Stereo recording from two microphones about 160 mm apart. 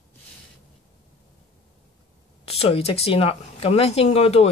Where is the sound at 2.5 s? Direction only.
40° left (ahead or behind).